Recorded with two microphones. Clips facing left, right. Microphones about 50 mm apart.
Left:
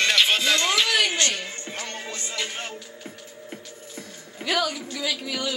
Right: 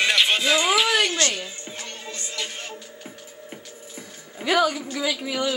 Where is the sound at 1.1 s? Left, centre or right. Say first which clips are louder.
Right 1 dB; left.